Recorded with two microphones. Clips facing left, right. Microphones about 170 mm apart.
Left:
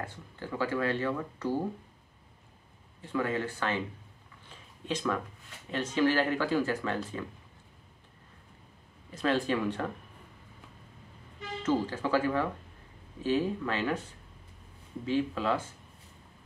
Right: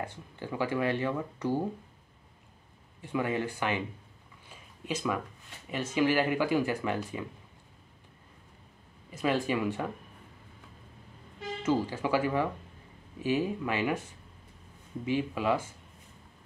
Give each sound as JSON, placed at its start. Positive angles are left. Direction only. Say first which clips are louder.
{"t": 0.0, "sound": "speech", "louder": "right 2 dB", "side_deg": -15}
{"t": 3.0, "sound": "speech", "louder": "even", "side_deg": -15}
{"t": 4.5, "sound": "a sound", "louder": "left 1 dB", "side_deg": -10}
{"t": 5.7, "sound": "speech", "louder": "even", "side_deg": -10}
{"t": 9.1, "sound": "speech", "louder": "even", "side_deg": -10}
{"t": 11.6, "sound": "speech", "louder": "even", "side_deg": -10}
{"t": 15.0, "sound": "speech", "louder": "even", "side_deg": -15}